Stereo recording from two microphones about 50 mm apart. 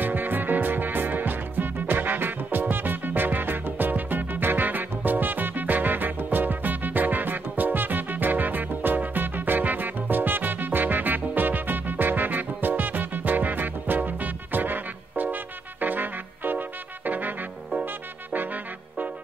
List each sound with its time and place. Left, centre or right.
0.0 s music: right